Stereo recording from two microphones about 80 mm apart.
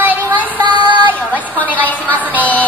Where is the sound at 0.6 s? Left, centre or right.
Right.